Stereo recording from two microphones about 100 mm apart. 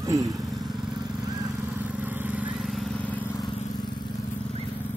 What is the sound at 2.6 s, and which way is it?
Vehicle, centre (ahead or behind).